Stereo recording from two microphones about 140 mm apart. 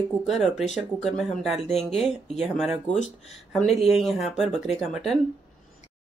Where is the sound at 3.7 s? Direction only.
45° left (ahead or behind).